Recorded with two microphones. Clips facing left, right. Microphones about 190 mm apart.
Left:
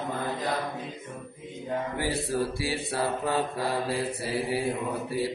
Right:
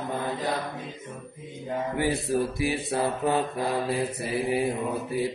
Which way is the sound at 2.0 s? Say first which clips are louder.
Right 4 dB; 20° right (ahead or behind).